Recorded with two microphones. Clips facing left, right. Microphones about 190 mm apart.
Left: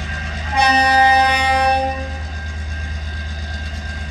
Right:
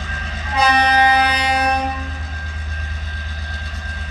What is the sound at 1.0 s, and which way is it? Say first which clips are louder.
Vehicle: left 2 dB; 30° left (ahead or behind).